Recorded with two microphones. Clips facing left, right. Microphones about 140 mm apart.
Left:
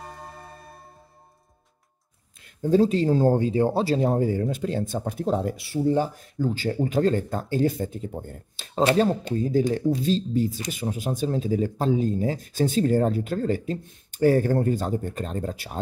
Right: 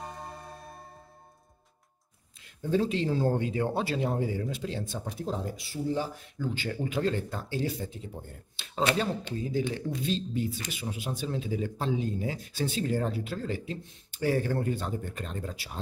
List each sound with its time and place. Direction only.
0.0 s music: centre (ahead or behind)
2.4 s speech: 40° left (ahead or behind); by 6.0 s 60° left (ahead or behind)
6.1 s speech: 40° left (ahead or behind)